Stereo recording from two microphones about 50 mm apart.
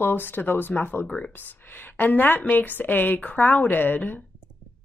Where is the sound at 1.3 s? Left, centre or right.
Left.